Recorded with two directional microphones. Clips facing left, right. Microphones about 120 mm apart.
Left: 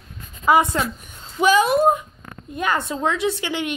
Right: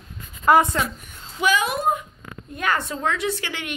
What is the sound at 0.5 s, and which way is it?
Speech, 5° left (ahead or behind).